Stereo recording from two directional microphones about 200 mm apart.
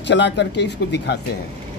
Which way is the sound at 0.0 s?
60° left (ahead or behind).